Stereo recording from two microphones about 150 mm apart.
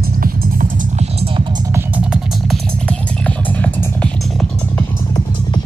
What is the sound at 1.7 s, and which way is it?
Music, 10° right (ahead or behind).